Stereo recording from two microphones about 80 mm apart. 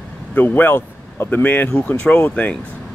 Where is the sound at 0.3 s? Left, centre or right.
Left.